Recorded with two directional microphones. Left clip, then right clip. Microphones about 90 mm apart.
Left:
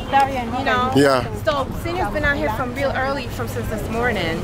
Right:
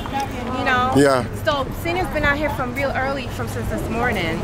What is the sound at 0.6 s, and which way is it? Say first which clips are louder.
Speech: right 1 dB; centre (ahead or behind).